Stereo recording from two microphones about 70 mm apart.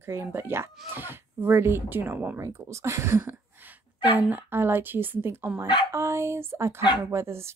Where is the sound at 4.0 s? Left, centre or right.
Right.